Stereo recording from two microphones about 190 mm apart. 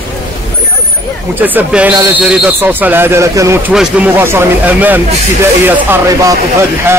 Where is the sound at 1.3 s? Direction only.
10° right (ahead or behind).